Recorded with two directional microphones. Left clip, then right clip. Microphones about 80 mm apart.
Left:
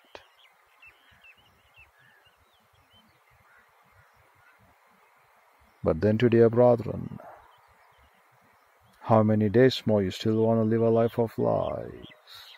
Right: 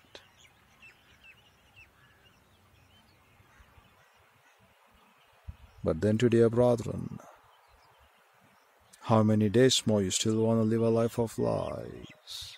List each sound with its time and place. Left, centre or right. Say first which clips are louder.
6.0 s speech: left 4 dB; right
9.0 s speech: left 4 dB; right